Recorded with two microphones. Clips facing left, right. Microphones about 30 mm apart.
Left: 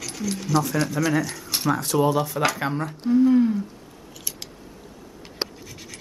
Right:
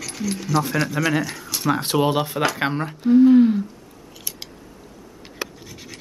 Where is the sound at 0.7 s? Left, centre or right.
Centre.